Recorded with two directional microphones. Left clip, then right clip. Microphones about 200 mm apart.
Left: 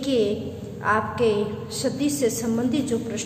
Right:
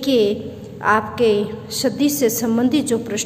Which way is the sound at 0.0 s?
40° right (ahead or behind).